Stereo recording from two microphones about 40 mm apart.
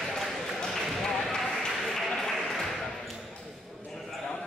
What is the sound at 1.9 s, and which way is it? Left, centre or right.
Applause, centre.